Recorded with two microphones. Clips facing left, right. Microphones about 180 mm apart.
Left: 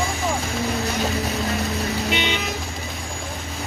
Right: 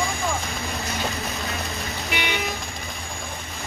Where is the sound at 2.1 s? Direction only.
20° left (ahead or behind).